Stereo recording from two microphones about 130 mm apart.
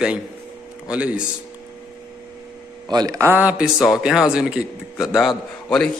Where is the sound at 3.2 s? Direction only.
15° right (ahead or behind).